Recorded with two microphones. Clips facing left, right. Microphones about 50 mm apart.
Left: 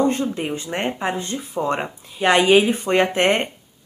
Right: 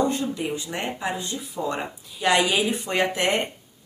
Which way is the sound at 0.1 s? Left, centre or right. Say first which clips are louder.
Left 3 dB; left.